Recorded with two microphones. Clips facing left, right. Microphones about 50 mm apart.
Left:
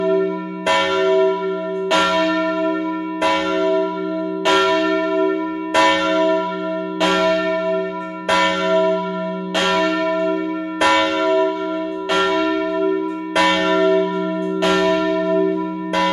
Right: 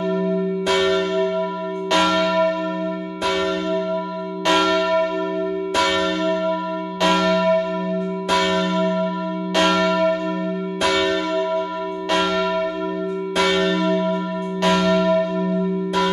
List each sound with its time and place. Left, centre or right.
0.7 s church bell: left
1.9 s church bell: centre
2.2 s church bell: centre
3.3 s church bell: left
5.8 s church bell: left
7.0 s church bell: centre
8.3 s church bell: left; by 10.3 s centre
10.8 s church bell: left
12.1 s church bell: centre
13.4 s church bell: left; by 15.2 s centre